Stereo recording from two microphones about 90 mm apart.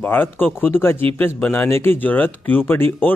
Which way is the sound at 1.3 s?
15° left (ahead or behind).